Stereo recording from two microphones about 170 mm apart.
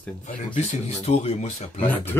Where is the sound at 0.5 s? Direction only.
40° left (ahead or behind).